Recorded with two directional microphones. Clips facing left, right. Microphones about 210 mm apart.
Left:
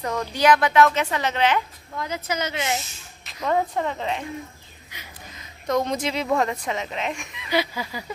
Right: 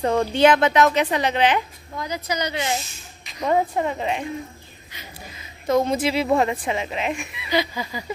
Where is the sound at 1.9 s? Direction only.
Centre (ahead or behind).